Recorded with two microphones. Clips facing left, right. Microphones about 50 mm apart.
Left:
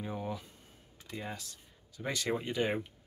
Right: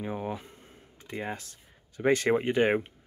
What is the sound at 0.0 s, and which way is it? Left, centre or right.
Speech, right.